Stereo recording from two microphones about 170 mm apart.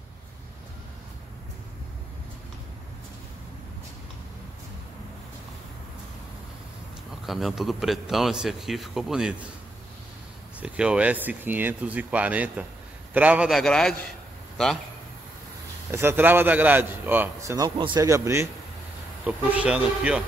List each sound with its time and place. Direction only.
7.2 s a man's voice: centre (ahead or behind)
10.6 s a man's voice: 5° right (ahead or behind)
15.9 s a man's voice: 15° right (ahead or behind)
18.0 s a man's voice: 15° right (ahead or behind)